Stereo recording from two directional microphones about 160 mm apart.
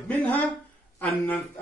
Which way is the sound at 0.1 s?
10° left (ahead or behind).